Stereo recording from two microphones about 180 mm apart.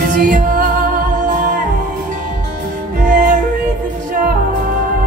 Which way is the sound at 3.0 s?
50° right (ahead or behind).